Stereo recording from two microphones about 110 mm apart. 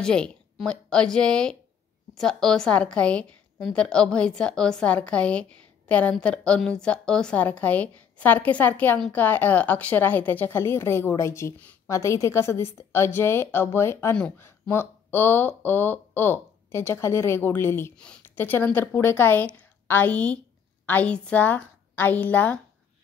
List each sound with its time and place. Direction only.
0.0 s a woman's voice: 5° left (ahead or behind); by 17.9 s 20° left (ahead or behind)
17.9 s a woman's voice: 10° left (ahead or behind)
18.2 s a woman's voice: 20° left (ahead or behind)